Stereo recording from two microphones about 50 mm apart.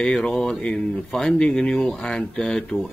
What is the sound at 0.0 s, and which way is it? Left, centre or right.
Speech, centre.